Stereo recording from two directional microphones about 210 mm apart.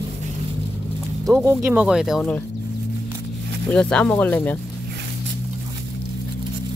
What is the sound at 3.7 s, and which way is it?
Speech, 5° left (ahead or behind).